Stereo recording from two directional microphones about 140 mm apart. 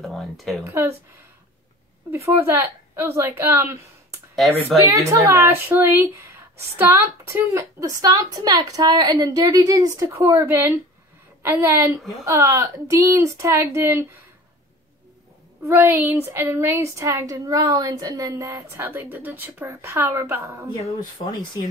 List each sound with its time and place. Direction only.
0.0 s speech: centre (ahead or behind)
0.7 s a woman's voice: 20° right (ahead or behind)
2.0 s a woman's voice: 20° right (ahead or behind)
4.6 s a woman's voice: 20° right (ahead or behind)
15.6 s a woman's voice: 15° right (ahead or behind)
21.3 s speech: 30° left (ahead or behind)